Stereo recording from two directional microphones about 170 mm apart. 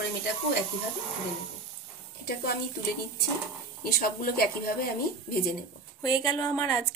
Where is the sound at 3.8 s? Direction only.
60° left (ahead or behind).